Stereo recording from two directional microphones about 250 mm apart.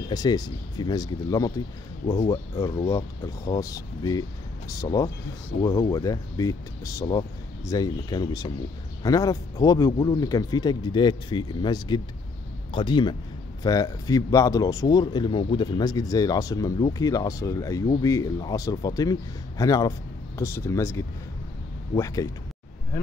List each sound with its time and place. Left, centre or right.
0.1 s speech: centre